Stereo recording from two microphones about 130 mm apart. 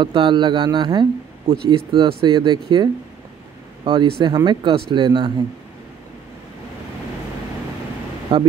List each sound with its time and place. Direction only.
0.0 s speech: 40° right (ahead or behind)
8.3 s speech: 45° right (ahead or behind)